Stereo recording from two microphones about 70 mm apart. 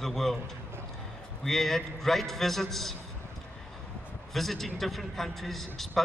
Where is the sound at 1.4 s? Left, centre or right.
Centre.